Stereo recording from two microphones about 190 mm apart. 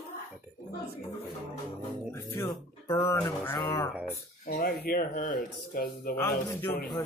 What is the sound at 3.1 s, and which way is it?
Music, 10° left (ahead or behind).